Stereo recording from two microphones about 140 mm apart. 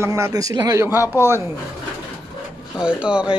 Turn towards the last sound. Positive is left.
turn(degrees=-10)  # may be behind; listen again after turning